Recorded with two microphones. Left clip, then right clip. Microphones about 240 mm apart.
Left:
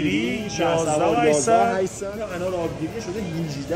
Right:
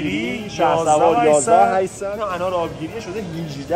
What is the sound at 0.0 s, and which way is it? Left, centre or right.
Speech, centre.